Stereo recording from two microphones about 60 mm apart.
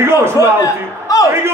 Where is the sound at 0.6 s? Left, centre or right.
Left.